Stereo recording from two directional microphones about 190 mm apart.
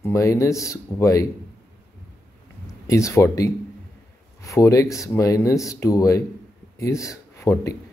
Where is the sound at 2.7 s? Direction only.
15° left (ahead or behind).